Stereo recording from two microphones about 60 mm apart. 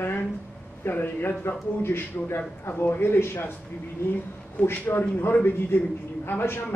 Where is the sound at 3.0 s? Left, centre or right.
Left.